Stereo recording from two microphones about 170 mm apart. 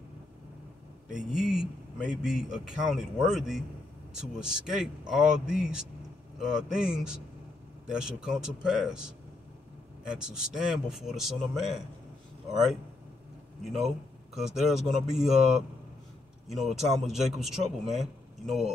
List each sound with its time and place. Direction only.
1.0 s a man's voice: 5° right (ahead or behind)
13.7 s a man's voice: centre (ahead or behind)
16.4 s a man's voice: centre (ahead or behind)